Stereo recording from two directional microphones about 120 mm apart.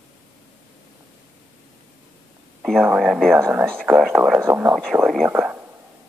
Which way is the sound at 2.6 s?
Centre (ahead or behind).